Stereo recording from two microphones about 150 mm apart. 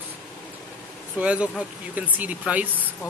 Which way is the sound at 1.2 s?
10° right (ahead or behind).